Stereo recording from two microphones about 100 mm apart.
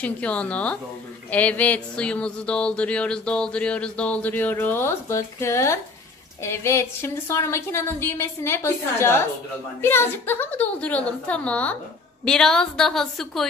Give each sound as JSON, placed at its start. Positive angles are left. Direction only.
{"t": 0.0, "sound": "a woman's voice", "side_deg": 15}